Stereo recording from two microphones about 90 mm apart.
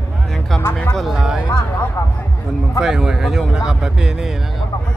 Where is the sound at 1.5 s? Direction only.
25° left (ahead or behind).